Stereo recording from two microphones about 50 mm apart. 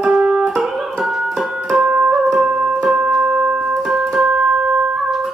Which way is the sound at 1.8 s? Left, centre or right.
Centre.